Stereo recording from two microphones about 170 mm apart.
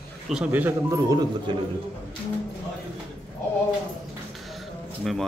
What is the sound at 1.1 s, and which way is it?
Speech, 25° right (ahead or behind).